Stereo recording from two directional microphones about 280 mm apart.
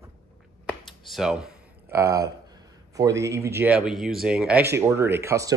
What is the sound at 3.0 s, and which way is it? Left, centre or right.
Speech, centre.